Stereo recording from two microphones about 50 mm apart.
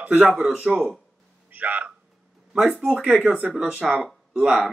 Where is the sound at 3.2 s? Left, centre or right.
Right.